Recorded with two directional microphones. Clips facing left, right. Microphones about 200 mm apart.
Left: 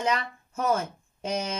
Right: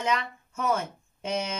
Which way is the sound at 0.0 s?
40° left (ahead or behind).